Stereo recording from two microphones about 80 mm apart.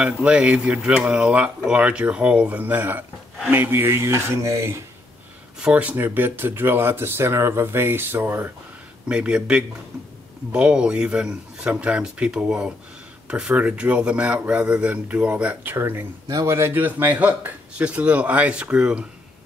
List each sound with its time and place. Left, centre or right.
0.0 s speech: centre; by 4.8 s right
5.6 s speech: centre
9.1 s speech: centre
15.7 s speech: right
16.3 s speech: right; by 19.0 s centre